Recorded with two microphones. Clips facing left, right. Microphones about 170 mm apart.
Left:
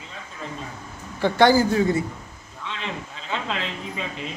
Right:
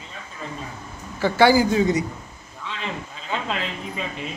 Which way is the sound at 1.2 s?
5° right (ahead or behind).